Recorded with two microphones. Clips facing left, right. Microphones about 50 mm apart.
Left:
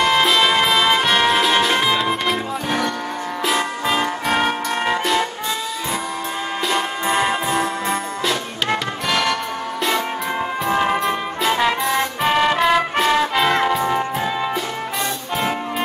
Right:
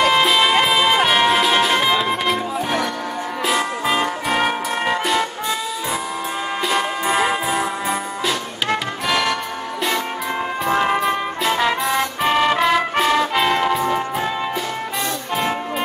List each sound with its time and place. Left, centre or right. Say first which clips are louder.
0.0 s music: even; centre
6.7 s music: right 1 dB; centre
10.6 s brass instrument: right 1 dB; centre
13.5 s music: even; centre